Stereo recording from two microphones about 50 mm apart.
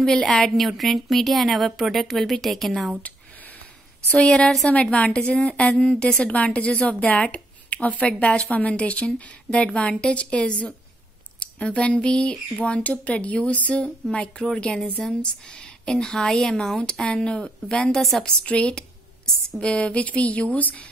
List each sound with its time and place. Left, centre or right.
0.0 s a woman's voice: centre
4.2 s a woman's voice: centre
17.1 s a woman's voice: centre
18.2 s a woman's voice: left